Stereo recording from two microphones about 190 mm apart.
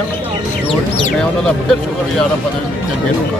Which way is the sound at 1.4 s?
5° left (ahead or behind).